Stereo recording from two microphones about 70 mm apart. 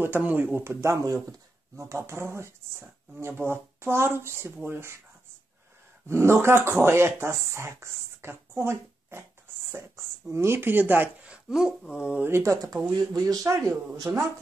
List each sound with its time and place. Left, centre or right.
0.0 s speech: right
0.7 s speech: right
1.8 s speech: right
6.0 s speech: right
11.2 s a sound: centre
11.9 s speech: centre
12.2 s speech: right
13.1 s speech: right